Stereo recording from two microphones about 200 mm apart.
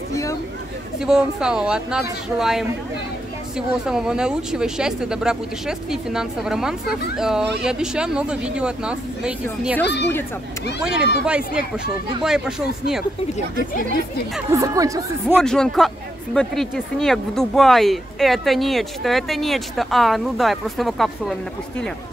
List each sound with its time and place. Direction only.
0.1 s a sound: 15° left (ahead or behind)
0.9 s speech: 5° right (ahead or behind)
10.8 s speech: 5° right (ahead or behind)
14.5 s speech: 15° right (ahead or behind)
15.4 s speech: 5° left (ahead or behind)